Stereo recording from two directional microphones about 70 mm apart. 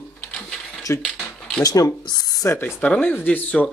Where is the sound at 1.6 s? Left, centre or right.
Left.